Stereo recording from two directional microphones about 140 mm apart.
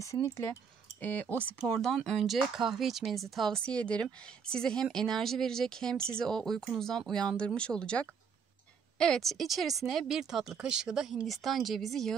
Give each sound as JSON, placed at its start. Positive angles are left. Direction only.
{"t": 0.0, "sound": "speech", "side_deg": 25}
{"t": 1.0, "sound": "speech", "side_deg": 10}